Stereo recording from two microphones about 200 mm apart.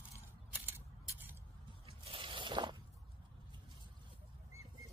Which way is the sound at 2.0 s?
25° right (ahead or behind).